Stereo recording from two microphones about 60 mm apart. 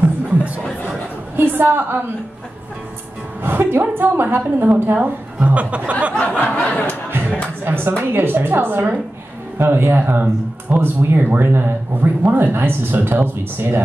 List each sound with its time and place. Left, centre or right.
0.0 s music: right
1.3 s a sound: right
3.4 s a woman's voice: right
6.1 s a sound: centre
7.1 s music: right
7.6 s speech: right